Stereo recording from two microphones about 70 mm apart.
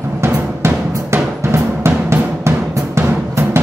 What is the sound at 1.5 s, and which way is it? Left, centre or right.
Drum, right.